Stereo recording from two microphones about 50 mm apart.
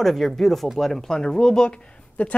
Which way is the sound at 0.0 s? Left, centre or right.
Centre.